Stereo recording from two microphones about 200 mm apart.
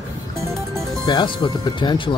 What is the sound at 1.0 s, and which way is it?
Speech, 20° left (ahead or behind).